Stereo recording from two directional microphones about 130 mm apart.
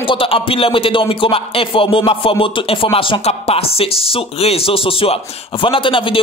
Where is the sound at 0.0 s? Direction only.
45° left (ahead or behind).